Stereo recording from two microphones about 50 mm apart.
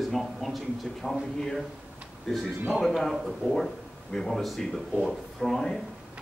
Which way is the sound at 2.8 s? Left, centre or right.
Centre.